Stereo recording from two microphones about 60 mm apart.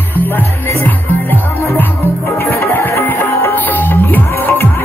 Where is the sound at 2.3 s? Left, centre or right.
Left.